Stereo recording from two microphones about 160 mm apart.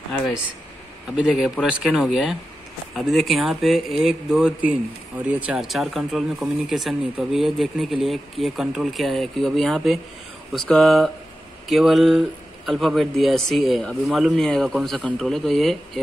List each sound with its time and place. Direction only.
1.1 s speech: 5° right (ahead or behind)